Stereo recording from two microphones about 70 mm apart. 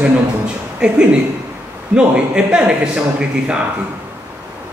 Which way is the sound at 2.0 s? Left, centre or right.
Centre.